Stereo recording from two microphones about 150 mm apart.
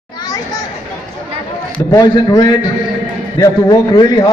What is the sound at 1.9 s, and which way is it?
A man's voice, 25° left (ahead or behind).